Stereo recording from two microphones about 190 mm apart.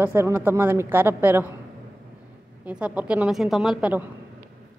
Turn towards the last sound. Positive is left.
turn(degrees=-5)  # may be behind; listen again after turning